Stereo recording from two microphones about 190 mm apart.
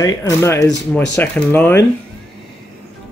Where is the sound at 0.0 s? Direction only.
15° left (ahead or behind).